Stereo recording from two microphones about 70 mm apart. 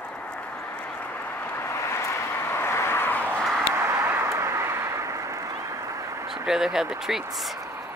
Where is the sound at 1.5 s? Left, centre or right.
Left.